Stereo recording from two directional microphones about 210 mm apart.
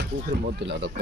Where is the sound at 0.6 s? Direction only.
55° right (ahead or behind).